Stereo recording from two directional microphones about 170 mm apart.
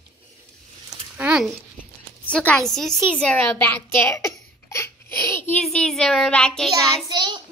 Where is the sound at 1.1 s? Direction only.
5° right (ahead or behind).